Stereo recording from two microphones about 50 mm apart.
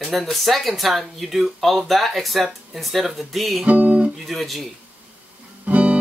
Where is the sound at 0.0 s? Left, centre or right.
Centre.